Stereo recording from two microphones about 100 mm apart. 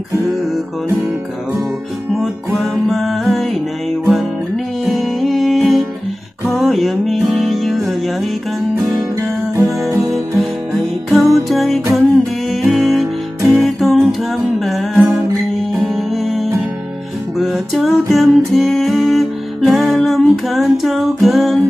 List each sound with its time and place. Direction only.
2.1 s music: centre (ahead or behind)
4.8 s music: centre (ahead or behind)
8.7 s music: 35° right (ahead or behind)
9.9 s music: centre (ahead or behind)
17.7 s music: centre (ahead or behind)